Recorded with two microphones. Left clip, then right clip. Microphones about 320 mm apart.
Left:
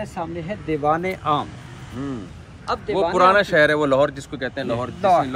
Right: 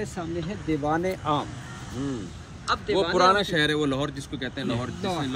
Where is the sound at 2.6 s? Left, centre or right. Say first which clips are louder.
Left 3 dB; centre.